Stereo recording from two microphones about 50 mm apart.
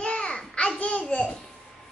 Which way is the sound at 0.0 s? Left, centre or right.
Left.